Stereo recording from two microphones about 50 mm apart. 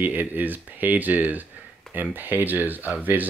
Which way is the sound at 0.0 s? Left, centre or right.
Right.